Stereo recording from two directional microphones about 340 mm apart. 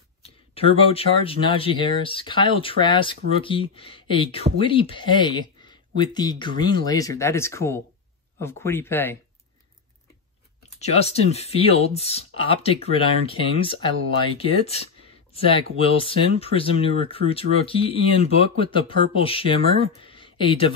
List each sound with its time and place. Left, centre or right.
0.2 s speech: centre
10.8 s speech: centre